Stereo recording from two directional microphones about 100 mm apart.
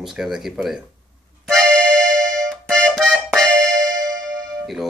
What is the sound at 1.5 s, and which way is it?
Accordion, 5° left (ahead or behind).